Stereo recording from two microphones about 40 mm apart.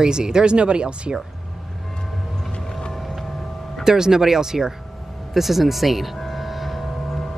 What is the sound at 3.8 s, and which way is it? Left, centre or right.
Speech, centre.